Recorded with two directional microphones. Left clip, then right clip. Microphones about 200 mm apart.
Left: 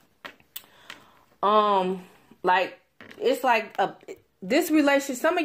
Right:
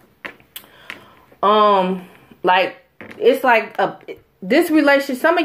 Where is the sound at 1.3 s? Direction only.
45° left (ahead or behind).